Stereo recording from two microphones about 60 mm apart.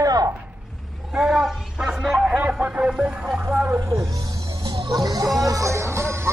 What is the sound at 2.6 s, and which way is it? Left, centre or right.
Speech, right.